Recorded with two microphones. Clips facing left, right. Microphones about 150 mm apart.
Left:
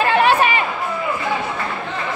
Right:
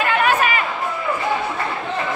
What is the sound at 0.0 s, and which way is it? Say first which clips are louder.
Chatter: left 3 dB; 30° left (ahead or behind).